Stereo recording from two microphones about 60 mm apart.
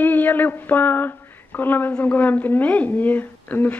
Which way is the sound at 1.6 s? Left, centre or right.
Left.